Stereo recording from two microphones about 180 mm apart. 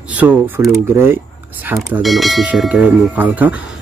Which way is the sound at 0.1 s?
10° right (ahead or behind).